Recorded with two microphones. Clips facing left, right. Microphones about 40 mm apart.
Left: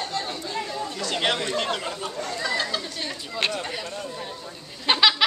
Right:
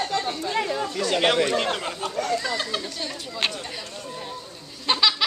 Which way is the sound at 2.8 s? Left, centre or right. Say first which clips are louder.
Even; centre.